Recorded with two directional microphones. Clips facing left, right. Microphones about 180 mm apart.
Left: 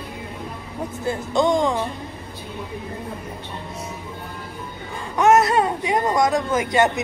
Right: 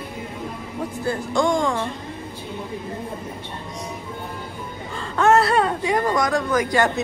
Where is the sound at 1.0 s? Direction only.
20° left (ahead or behind).